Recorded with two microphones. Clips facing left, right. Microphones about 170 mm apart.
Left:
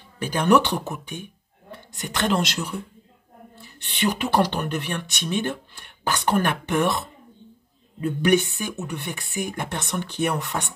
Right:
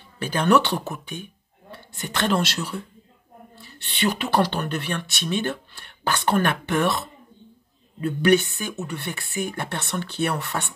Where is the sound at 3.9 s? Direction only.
15° left (ahead or behind).